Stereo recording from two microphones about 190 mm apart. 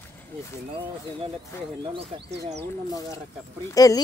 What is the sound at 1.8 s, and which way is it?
Speech, 25° right (ahead or behind).